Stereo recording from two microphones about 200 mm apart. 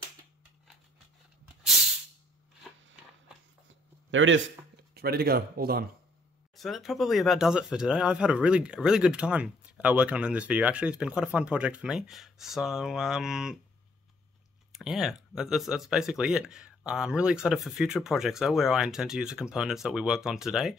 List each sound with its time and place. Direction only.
4.1 s speech: 70° right (ahead or behind)
4.9 s speech: 50° right (ahead or behind)
6.5 s speech: centre (ahead or behind)
14.8 s speech: centre (ahead or behind)